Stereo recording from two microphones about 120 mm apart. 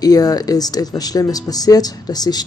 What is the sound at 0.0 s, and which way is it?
Speech, 30° left (ahead or behind).